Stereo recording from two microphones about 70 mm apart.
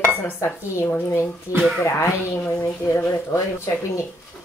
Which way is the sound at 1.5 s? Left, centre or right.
Left.